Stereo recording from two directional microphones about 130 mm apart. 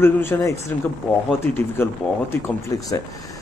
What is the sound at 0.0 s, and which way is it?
A man's voice, 20° left (ahead or behind).